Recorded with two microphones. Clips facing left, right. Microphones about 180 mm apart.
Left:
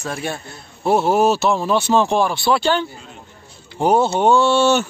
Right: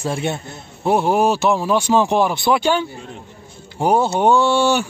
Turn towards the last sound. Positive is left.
turn(degrees=-15)  # may be behind; listen again after turning